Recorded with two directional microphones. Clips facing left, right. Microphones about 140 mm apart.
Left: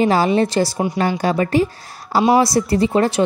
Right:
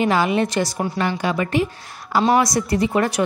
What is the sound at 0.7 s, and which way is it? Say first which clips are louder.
Speech: left 3 dB; 15° left (ahead or behind).